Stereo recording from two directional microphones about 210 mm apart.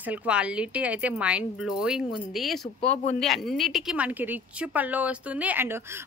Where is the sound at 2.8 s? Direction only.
30° left (ahead or behind).